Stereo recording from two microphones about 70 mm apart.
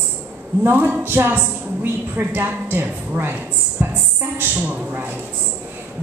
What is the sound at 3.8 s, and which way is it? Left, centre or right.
Music, right.